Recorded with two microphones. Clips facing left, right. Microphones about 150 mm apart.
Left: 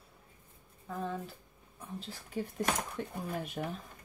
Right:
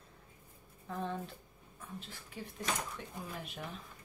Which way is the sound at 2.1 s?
45° left (ahead or behind).